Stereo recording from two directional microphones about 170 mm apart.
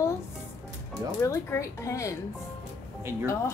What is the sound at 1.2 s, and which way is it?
Speech, 20° left (ahead or behind).